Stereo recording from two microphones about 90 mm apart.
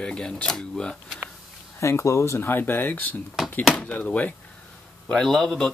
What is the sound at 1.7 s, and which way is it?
Speech, 35° left (ahead or behind).